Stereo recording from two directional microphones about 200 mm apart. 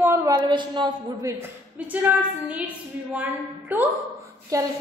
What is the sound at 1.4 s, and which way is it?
A woman's voice, 10° right (ahead or behind).